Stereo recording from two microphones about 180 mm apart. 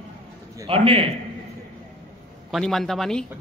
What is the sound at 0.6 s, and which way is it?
Speech, 30° right (ahead or behind).